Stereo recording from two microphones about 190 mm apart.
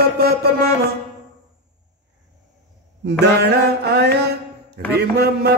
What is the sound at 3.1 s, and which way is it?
Mantra, 60° right (ahead or behind).